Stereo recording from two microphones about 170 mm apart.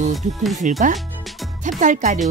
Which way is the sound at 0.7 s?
45° right (ahead or behind).